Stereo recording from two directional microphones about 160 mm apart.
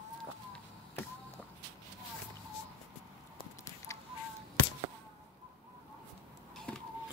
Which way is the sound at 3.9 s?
20° left (ahead or behind).